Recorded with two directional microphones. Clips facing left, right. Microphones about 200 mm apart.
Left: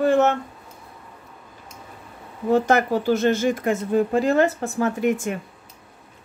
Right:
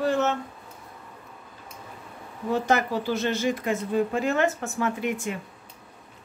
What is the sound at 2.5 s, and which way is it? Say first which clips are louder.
Speech: left 5 dB; 50° left (ahead or behind).